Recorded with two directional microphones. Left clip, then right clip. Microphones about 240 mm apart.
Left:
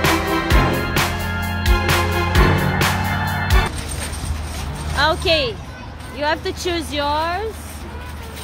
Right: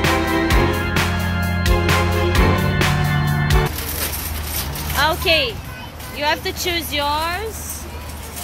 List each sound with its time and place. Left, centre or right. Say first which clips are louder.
0.0 s music: even; centre
4.9 s a sound: even; centre
6.1 s speech: right 1 dB; centre